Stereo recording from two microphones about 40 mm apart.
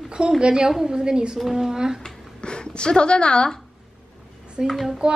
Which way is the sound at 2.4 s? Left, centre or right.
Left.